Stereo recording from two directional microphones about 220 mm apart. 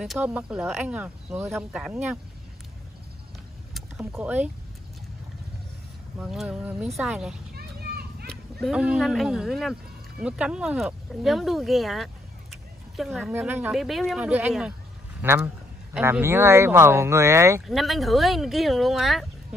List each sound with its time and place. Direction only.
0.0 s speech: 5° right (ahead or behind)
3.7 s vehicle: centre (ahead or behind)
4.1 s speech: 5° right (ahead or behind)
6.1 s speech: centre (ahead or behind)
7.5 s children playing: 45° right (ahead or behind)
8.3 s speech: centre (ahead or behind)
17.6 s speech: centre (ahead or behind)